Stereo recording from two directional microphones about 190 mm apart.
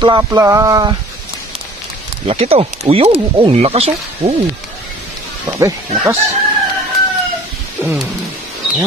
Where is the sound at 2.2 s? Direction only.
30° right (ahead or behind).